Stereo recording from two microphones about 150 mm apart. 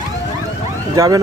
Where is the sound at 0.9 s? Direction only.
25° right (ahead or behind).